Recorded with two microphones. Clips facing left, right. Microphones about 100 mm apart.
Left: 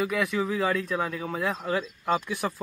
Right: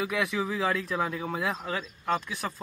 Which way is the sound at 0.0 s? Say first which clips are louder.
Left 2 dB; centre (ahead or behind).